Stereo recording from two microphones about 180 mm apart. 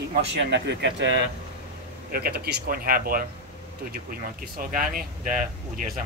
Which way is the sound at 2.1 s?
60° right (ahead or behind).